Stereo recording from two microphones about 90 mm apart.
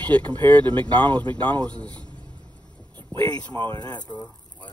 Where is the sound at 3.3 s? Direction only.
25° left (ahead or behind).